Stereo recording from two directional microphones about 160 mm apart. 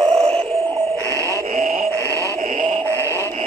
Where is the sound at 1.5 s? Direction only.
55° right (ahead or behind).